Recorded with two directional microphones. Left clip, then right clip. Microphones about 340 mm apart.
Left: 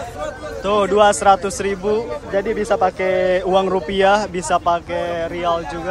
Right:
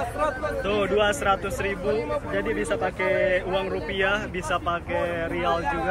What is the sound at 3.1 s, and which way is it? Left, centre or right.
Speech, left.